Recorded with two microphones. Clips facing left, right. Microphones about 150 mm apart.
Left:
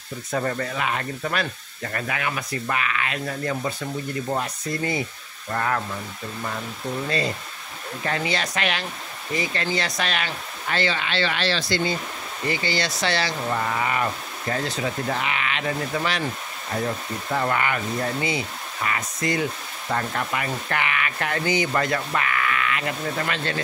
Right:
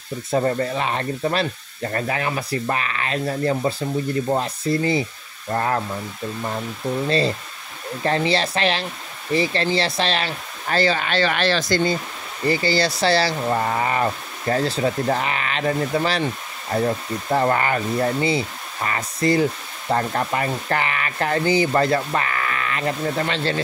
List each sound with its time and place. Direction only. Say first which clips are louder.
0.3 s speech: right 5 dB; 30° right (ahead or behind)
7.1 s speech: right 6 dB; 30° right (ahead or behind); by 11.9 s 45° right (ahead or behind)
12.4 s speech: right 6 dB; 35° right (ahead or behind)
17.3 s speech: right 5 dB; 35° right (ahead or behind)